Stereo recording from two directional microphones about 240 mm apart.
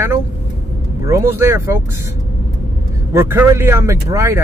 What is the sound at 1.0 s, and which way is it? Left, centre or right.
Speech, centre.